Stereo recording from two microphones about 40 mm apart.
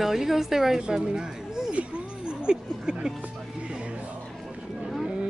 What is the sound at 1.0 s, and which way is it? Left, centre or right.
Speech, centre.